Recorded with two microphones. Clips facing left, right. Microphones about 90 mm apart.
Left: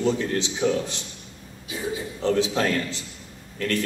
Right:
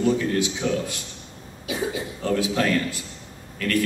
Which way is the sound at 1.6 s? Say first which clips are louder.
Right 3 dB; 75° right (ahead or behind).